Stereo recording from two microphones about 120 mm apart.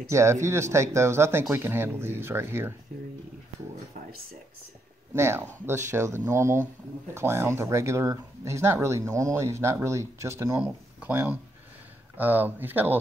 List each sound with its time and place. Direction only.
0.1 s speech: 25° right (ahead or behind)
5.1 s speech: 20° right (ahead or behind)
10.6 s speech: 15° right (ahead or behind)